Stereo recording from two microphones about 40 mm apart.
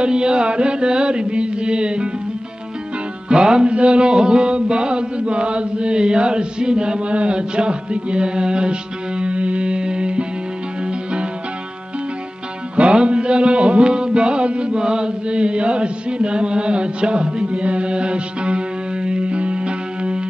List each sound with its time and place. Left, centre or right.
0.0 s music: right
3.3 s music: right
12.7 s music: right